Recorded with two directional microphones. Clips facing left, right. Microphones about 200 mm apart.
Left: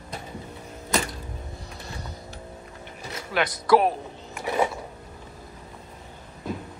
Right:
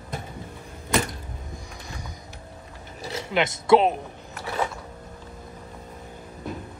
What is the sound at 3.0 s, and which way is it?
Speech, 25° right (ahead or behind).